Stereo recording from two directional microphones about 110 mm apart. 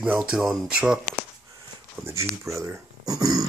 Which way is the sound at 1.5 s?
30° right (ahead or behind).